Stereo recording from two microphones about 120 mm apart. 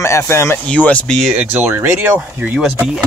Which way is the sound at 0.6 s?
10° left (ahead or behind).